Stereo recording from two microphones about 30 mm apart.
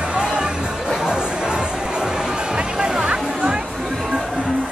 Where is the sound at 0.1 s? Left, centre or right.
Right.